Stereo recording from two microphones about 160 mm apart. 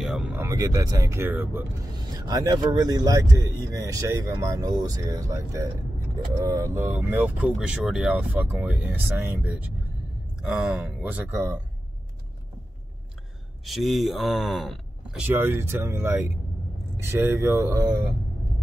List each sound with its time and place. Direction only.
0.0 s speech: 5° right (ahead or behind)
0.5 s speech: 20° right (ahead or behind)
2.1 s speech: 25° right (ahead or behind)
13.7 s speech: centre (ahead or behind); by 17.9 s 20° right (ahead or behind)